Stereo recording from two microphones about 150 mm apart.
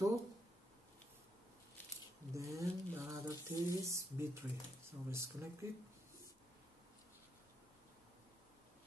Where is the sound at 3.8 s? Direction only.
20° right (ahead or behind).